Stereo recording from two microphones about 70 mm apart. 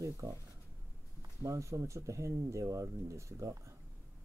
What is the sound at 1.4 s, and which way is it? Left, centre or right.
Speech, right.